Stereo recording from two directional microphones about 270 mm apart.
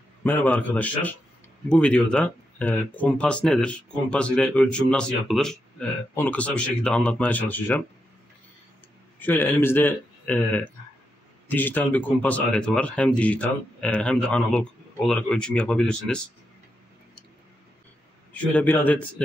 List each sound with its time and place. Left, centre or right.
0.2 s a man's voice: centre
9.2 s a man's voice: centre
18.3 s speech: centre